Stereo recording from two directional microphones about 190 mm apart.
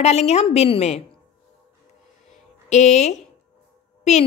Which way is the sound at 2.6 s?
35° left (ahead or behind).